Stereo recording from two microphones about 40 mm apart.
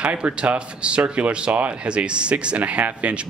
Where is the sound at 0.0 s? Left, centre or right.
Right.